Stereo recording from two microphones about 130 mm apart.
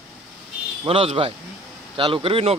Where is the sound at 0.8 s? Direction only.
45° right (ahead or behind).